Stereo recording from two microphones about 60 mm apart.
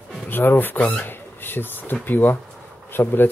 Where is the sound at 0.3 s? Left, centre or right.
Left.